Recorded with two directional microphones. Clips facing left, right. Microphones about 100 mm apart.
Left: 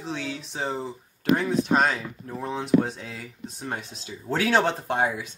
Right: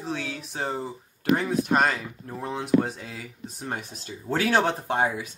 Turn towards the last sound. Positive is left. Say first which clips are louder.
# even
turn(degrees=0)  # may be behind; listen again after turning